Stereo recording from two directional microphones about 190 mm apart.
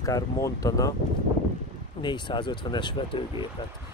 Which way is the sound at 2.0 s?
25° left (ahead or behind).